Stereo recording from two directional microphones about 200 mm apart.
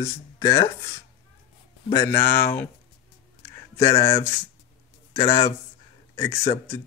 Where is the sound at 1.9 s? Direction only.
15° left (ahead or behind).